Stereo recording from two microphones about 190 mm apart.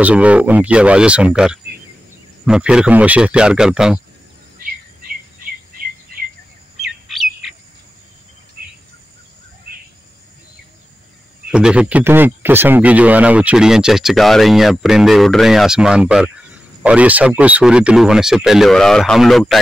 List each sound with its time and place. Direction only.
0.0 s speech: 5° right (ahead or behind)
6.1 s cricket: 50° right (ahead or behind)
6.8 s bird: centre (ahead or behind)
8.6 s insect: 50° right (ahead or behind)
11.5 s speech: 5° right (ahead or behind)